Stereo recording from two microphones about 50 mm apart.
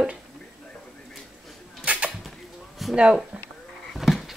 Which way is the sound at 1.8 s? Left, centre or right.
Right.